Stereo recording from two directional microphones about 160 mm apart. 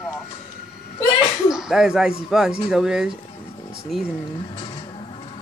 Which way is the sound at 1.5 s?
5° right (ahead or behind).